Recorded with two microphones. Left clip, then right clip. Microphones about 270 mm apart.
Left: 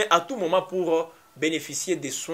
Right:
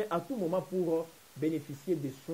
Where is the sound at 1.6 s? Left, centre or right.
Left.